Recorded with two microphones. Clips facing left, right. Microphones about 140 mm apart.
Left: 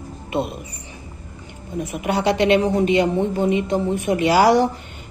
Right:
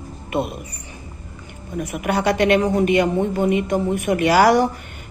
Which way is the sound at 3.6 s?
60° right (ahead or behind).